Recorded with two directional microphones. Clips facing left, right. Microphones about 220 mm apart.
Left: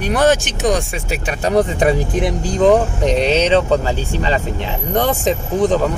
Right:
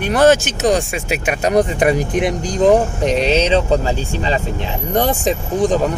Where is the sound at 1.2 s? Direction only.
15° right (ahead or behind).